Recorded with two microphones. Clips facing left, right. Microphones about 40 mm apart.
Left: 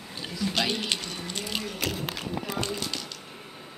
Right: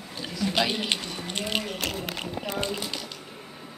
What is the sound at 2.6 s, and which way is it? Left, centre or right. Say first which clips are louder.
Speech: right 1 dB; centre.